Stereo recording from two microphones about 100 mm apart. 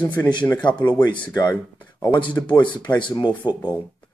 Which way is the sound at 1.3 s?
40° left (ahead or behind).